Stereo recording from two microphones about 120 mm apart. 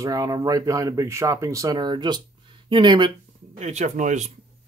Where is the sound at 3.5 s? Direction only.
70° right (ahead or behind); by 4.3 s 90° right.